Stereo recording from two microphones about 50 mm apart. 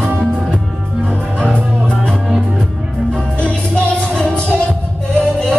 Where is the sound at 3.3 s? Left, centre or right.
Left.